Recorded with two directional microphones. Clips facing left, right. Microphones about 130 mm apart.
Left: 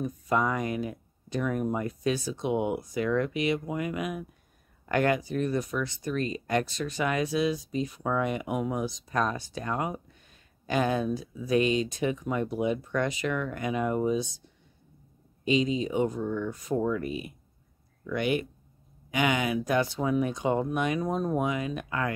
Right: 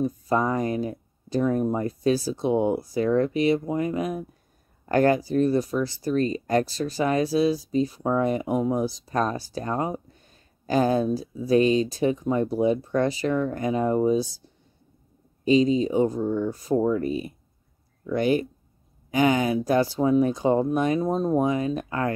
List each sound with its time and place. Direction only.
0.0 s speech: 30° right (ahead or behind)